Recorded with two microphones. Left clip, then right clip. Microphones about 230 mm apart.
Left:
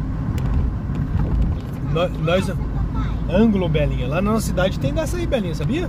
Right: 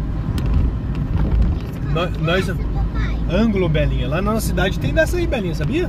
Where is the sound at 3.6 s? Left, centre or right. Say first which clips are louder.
Right 2 dB; centre.